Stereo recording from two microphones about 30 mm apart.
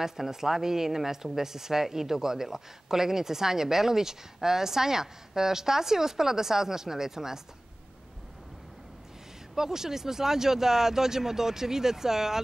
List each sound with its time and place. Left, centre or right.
0.0 s speech: centre
9.6 s speech: centre